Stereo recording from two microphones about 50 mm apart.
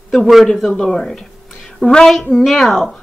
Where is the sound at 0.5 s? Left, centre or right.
Centre.